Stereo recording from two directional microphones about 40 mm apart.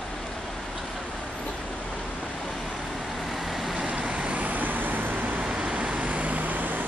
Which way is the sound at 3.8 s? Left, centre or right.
Right.